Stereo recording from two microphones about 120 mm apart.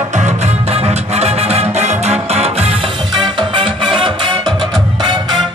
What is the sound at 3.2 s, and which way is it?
Music, 45° right (ahead or behind).